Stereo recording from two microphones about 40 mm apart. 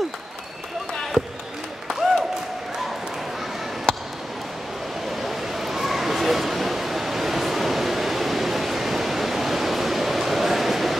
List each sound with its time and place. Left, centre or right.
1.9 s applause: centre
3.9 s basketball bounce: left
5.0 s a sound: centre